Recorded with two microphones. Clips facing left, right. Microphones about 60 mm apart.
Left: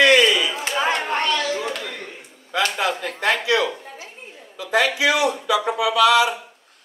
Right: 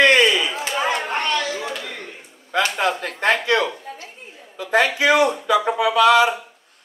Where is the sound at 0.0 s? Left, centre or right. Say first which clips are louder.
Even; right.